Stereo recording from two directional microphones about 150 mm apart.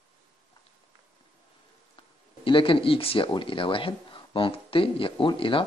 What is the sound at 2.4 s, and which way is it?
Speech, 35° left (ahead or behind).